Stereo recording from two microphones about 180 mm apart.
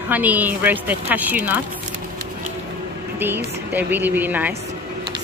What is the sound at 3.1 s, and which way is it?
A woman's voice, 10° right (ahead or behind).